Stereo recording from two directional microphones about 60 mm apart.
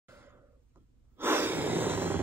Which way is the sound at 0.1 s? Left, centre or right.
Right.